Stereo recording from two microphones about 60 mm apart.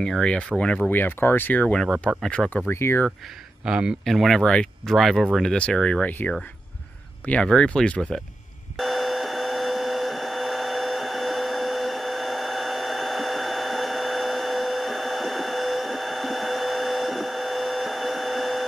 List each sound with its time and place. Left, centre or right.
0.0 s speech: centre
0.8 s speech: left
2.1 s speech: centre
2.7 s speech: left
3.6 s speech: centre
4.0 s speech: centre
4.4 s speech: centre
4.8 s speech: centre
5.6 s speech: centre
6.0 s speech: left
7.4 s speech: centre
8.7 s a sound: centre